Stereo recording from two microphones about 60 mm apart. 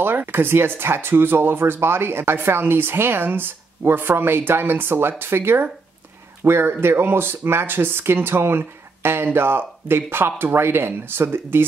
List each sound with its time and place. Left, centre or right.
0.3 s speech: right